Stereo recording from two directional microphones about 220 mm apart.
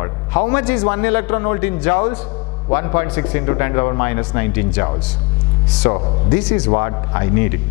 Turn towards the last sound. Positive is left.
turn(degrees=15)  # may be behind; listen again after turning